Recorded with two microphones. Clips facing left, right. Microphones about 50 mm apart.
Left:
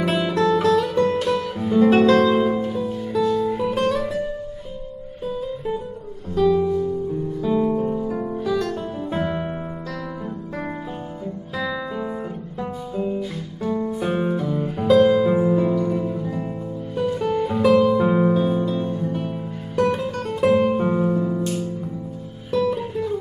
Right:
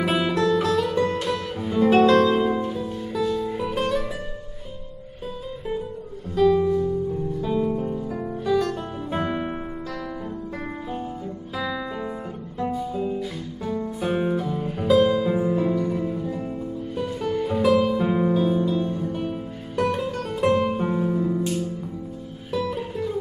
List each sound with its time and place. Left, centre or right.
0.0 s music: centre
5.2 s music: centre
11.5 s music: centre